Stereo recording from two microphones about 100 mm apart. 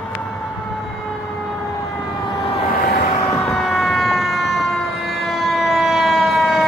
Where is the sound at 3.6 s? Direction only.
Centre (ahead or behind).